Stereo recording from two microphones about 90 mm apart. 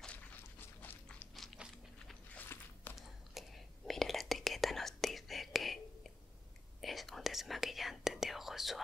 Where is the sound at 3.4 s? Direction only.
Centre (ahead or behind).